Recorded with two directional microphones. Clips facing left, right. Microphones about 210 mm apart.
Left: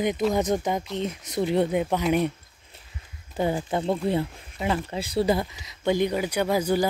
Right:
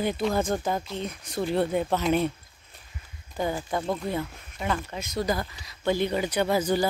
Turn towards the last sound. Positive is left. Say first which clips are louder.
# left 1 dB
turn(degrees=10)  # may be behind; listen again after turning